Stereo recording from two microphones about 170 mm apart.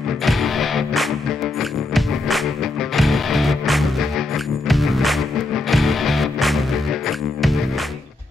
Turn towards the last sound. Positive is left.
turn(degrees=0)  # may be behind; listen again after turning